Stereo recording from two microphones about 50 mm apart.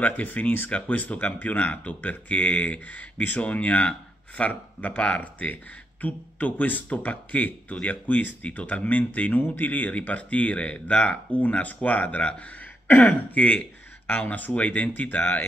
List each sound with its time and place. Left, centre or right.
0.0 s speech: left